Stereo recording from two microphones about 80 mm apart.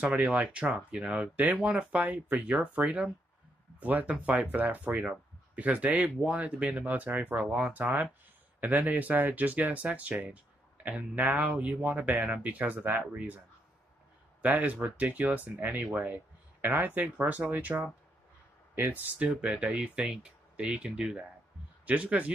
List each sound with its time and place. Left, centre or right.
0.0 s speech: centre
14.4 s speech: centre